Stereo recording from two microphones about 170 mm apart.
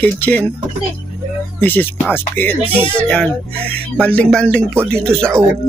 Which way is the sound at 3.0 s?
5° left (ahead or behind).